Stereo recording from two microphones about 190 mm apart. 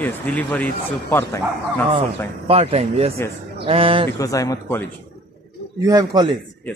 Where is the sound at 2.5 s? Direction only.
30° right (ahead or behind).